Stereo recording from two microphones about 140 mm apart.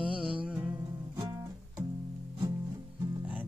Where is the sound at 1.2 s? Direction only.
30° right (ahead or behind).